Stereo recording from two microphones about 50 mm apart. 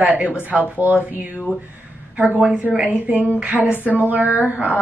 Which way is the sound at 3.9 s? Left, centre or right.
Right.